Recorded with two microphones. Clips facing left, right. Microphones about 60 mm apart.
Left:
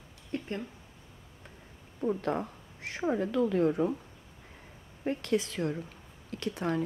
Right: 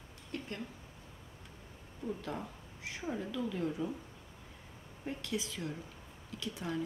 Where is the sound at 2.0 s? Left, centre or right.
Left.